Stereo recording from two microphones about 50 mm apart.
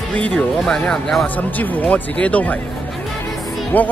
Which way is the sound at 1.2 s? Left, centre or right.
Left.